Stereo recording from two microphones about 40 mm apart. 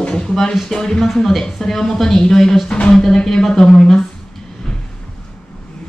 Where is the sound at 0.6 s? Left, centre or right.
Centre.